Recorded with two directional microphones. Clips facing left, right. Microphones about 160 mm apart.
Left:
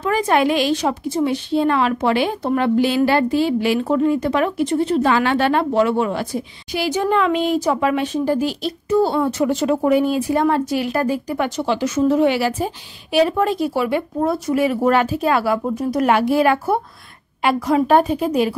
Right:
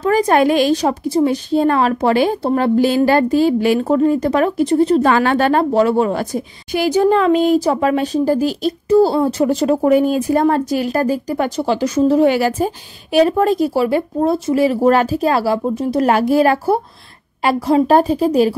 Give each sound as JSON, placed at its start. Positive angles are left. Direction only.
{"t": 0.0, "sound": "a woman's voice", "side_deg": -40}
{"t": 7.0, "sound": "a woman's voice", "side_deg": -35}
{"t": 16.1, "sound": "a woman's voice", "side_deg": -40}